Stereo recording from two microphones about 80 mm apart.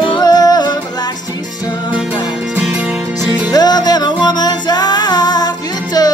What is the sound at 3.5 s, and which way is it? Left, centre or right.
Music, left.